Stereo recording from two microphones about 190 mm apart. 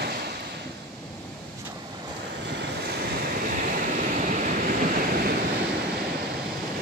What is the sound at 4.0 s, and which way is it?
Vehicle, 45° right (ahead or behind).